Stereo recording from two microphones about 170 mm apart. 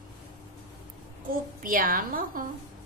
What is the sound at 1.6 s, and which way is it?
Speech, 55° right (ahead or behind).